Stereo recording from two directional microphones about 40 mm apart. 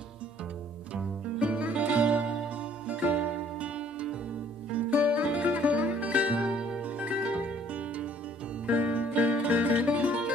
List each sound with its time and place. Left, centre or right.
1.4 s music: right
4.7 s music: right
6.8 s zither: right
7.2 s music: right